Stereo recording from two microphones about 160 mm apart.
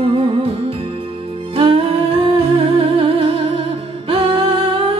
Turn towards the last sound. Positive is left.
turn(degrees=-35)  # may be behind; listen again after turning